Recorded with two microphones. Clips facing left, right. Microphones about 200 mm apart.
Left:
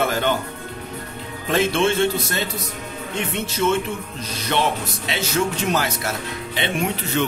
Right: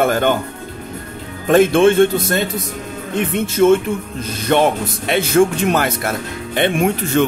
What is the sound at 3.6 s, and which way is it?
Speech, 50° right (ahead or behind).